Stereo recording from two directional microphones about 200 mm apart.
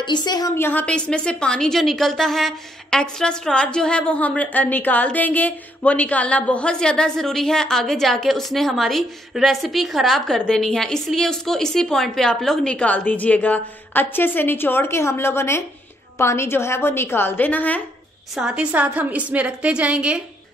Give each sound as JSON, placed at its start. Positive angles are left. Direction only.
{"t": 0.0, "sound": "a woman's voice", "side_deg": 20}
{"t": 18.3, "sound": "a woman's voice", "side_deg": -5}